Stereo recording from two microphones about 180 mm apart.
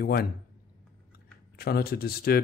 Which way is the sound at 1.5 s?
60° left (ahead or behind).